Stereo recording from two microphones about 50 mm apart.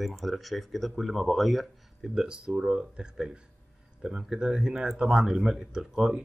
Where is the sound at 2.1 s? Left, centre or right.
Centre.